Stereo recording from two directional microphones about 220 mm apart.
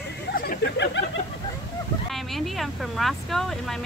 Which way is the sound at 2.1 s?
Centre (ahead or behind).